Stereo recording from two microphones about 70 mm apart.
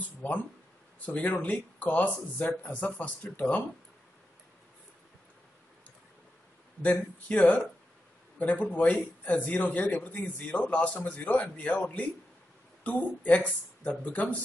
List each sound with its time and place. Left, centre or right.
0.2 s speech: centre
6.8 s speech: left